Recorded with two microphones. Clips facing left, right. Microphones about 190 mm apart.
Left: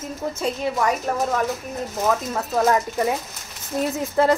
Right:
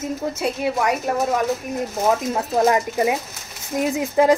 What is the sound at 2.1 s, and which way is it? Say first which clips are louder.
A woman's voice: right 3 dB; 20° right (ahead or behind).